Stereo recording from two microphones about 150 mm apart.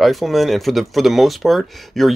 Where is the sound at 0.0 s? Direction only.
Centre (ahead or behind).